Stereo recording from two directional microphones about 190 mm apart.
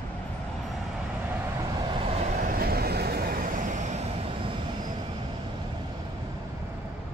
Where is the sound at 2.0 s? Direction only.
40° right (ahead or behind).